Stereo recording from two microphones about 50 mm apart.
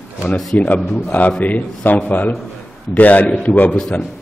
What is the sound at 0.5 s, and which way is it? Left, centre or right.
A man's voice, left.